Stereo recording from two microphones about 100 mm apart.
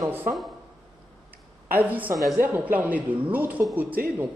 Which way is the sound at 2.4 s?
20° right (ahead or behind).